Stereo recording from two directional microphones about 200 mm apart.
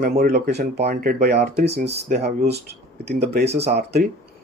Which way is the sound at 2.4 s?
30° right (ahead or behind).